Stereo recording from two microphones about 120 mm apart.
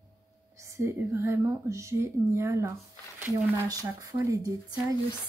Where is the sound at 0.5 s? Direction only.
25° right (ahead or behind).